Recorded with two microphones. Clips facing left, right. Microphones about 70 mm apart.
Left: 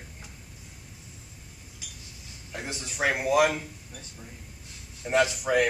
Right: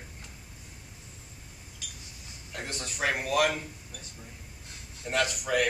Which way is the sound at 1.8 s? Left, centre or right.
Centre.